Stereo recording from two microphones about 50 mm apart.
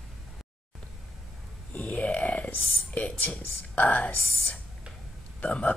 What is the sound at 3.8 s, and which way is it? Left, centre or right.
Speech, left.